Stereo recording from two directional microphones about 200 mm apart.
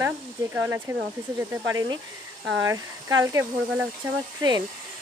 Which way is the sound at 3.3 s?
15° right (ahead or behind).